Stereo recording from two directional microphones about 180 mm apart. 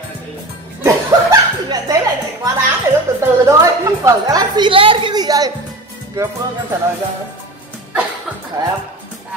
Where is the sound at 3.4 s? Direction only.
15° right (ahead or behind).